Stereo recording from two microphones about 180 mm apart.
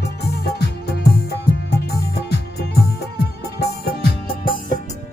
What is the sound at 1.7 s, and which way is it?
Music, 70° left (ahead or behind).